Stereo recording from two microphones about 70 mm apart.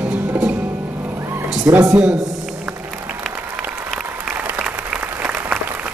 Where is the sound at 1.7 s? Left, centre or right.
Right.